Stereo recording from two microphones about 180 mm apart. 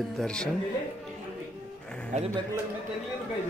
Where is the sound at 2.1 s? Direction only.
40° right (ahead or behind).